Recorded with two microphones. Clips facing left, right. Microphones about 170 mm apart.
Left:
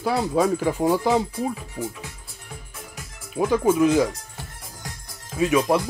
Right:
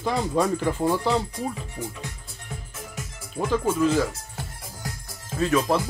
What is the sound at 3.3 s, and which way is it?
Speech, 10° left (ahead or behind).